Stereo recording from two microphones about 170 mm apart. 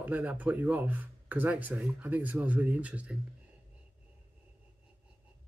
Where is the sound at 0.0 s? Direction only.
10° right (ahead or behind).